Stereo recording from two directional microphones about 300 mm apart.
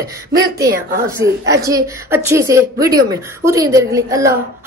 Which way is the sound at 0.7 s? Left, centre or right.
Right.